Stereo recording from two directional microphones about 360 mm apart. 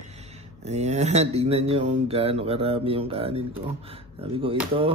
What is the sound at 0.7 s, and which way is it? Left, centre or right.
Speech, centre.